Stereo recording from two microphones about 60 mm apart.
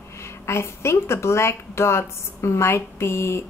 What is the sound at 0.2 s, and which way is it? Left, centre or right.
A woman's voice, left.